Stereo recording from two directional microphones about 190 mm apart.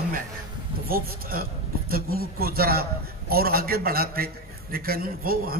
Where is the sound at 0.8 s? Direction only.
50° right (ahead or behind).